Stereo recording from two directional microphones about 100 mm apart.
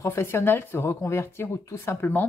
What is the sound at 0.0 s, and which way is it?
Speech, 25° left (ahead or behind).